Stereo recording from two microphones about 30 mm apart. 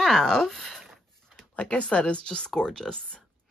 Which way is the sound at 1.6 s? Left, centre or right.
Left.